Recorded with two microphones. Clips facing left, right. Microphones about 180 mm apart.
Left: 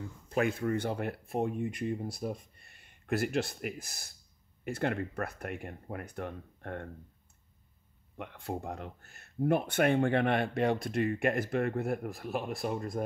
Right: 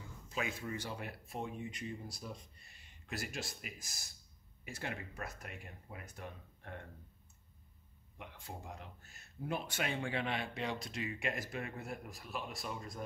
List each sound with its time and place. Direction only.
0.3 s speech: 55° left (ahead or behind)
8.2 s speech: 60° left (ahead or behind)